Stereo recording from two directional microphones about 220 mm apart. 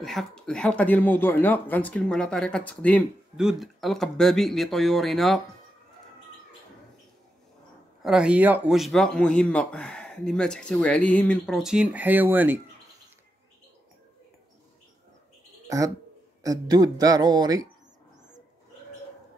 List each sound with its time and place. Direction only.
0.0 s speech: centre (ahead or behind)
8.0 s speech: 5° right (ahead or behind)
16.4 s speech: 20° right (ahead or behind)